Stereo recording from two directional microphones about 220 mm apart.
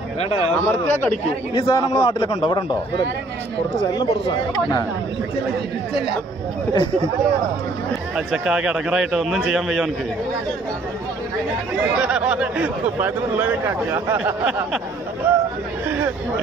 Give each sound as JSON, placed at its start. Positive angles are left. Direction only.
{"t": 0.7, "sound": "speech", "side_deg": 10}
{"t": 1.5, "sound": "a man's voice", "side_deg": 20}
{"t": 4.0, "sound": "a man's voice", "side_deg": 20}
{"t": 8.3, "sound": "speech", "side_deg": -5}
{"t": 12.0, "sound": "speech", "side_deg": -5}